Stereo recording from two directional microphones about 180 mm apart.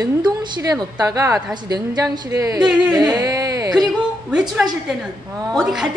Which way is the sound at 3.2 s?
20° right (ahead or behind).